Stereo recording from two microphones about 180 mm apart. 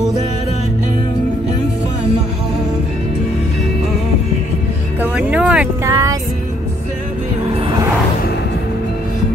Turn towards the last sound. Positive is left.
turn(degrees=-35)  # may be behind; listen again after turning